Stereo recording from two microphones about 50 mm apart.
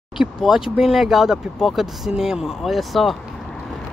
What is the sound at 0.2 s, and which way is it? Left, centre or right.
Speech, centre.